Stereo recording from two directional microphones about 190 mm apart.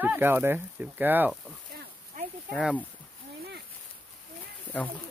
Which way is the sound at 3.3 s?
55° right (ahead or behind).